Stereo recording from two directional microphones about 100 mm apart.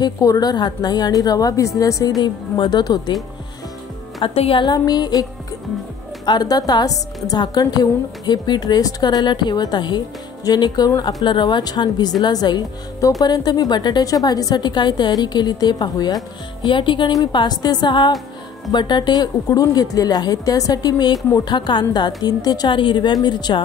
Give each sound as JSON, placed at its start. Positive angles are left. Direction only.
{"t": 0.0, "sound": "a woman's voice", "side_deg": 40}
{"t": 4.2, "sound": "speech", "side_deg": 70}
{"t": 4.6, "sound": "a woman's voice", "side_deg": 45}
{"t": 6.2, "sound": "a woman's voice", "side_deg": 40}
{"t": 11.2, "sound": "a woman's voice", "side_deg": 50}
{"t": 16.6, "sound": "a woman's voice", "side_deg": 55}
{"t": 22.7, "sound": "a woman's voice", "side_deg": 55}